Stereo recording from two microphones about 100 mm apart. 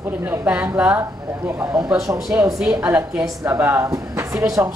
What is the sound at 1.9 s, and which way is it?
Speech, 5° right (ahead or behind).